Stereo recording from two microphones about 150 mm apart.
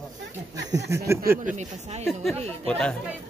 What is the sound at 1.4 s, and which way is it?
Speech, 50° right (ahead or behind).